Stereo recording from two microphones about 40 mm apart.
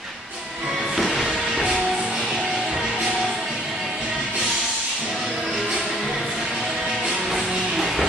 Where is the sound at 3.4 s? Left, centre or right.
Centre.